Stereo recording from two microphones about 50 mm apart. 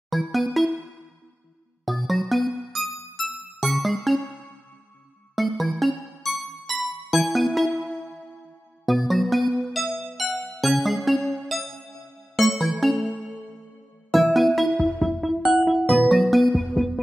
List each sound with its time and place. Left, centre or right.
0.1 s music: centre
1.9 s music: centre
5.3 s music: centre
8.8 s music: centre